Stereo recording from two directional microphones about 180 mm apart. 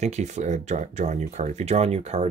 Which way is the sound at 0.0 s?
40° right (ahead or behind).